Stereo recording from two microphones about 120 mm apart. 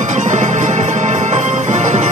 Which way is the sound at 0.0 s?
90° right.